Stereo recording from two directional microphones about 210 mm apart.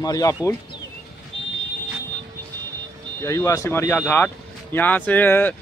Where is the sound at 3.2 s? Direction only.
15° left (ahead or behind).